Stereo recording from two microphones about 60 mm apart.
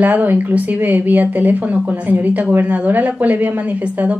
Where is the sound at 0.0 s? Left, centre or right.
Right.